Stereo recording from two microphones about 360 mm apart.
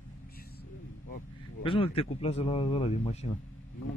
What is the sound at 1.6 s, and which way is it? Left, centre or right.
Speech, centre.